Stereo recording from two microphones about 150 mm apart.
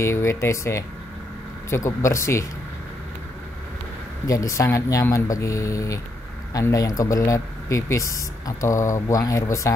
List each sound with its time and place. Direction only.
0.0 s speech: 20° left (ahead or behind)
1.9 s speech: 20° left (ahead or behind)
4.3 s speech: 20° left (ahead or behind)